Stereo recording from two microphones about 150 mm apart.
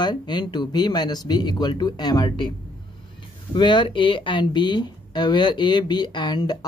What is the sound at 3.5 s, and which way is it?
Speech, 30° left (ahead or behind).